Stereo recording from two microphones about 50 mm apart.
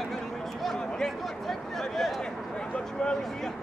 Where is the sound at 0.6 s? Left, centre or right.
Centre.